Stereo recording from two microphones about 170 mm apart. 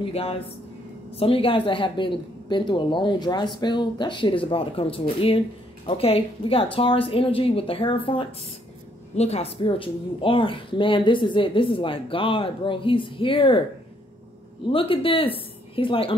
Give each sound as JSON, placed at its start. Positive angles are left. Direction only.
{"t": 0.0, "sound": "a woman's voice", "side_deg": 35}
{"t": 14.7, "sound": "a woman's voice", "side_deg": 30}